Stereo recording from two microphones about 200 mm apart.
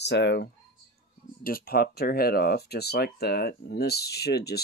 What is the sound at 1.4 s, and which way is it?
Speech, 45° left (ahead or behind).